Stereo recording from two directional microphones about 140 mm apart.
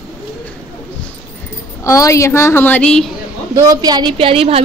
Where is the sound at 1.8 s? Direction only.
20° left (ahead or behind); by 3.1 s 5° left (ahead or behind).